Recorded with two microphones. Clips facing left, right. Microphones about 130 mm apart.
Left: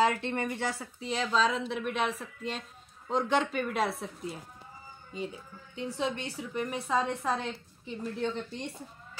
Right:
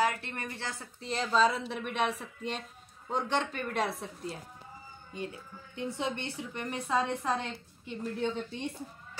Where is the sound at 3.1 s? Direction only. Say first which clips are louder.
Left 3 dB; centre (ahead or behind).